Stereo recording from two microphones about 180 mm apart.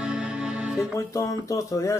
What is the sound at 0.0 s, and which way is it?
Music, 5° right (ahead or behind).